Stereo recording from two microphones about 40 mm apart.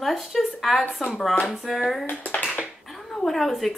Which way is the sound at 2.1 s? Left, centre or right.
Left.